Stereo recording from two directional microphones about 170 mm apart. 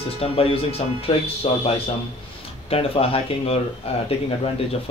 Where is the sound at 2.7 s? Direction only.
35° left (ahead or behind).